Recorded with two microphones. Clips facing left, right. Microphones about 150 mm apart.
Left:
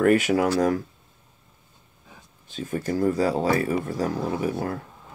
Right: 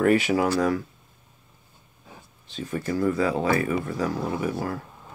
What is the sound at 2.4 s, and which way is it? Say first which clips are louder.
Speech: left 1 dB; 50° left (ahead or behind).